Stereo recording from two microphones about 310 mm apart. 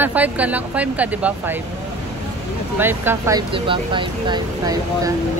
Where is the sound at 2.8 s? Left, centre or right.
Centre.